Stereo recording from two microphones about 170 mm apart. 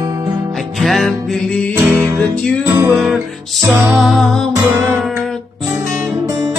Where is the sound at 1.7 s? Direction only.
15° right (ahead or behind).